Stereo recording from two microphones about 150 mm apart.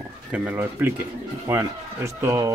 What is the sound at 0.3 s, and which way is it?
Speech, 10° right (ahead or behind).